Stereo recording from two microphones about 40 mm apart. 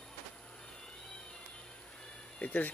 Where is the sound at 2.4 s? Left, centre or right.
Left.